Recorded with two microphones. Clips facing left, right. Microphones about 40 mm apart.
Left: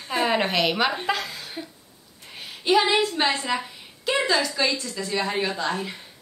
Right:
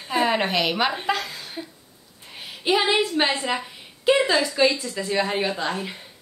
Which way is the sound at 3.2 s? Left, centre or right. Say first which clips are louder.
Right 1 dB; centre.